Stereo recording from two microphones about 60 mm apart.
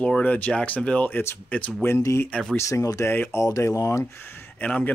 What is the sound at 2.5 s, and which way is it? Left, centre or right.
Speech, left.